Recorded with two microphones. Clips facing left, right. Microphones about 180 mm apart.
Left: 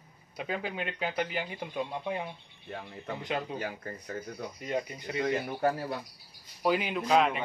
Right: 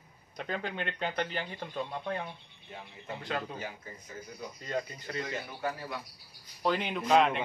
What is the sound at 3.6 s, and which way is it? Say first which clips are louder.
Speech: left 5 dB; 65° left (ahead or behind).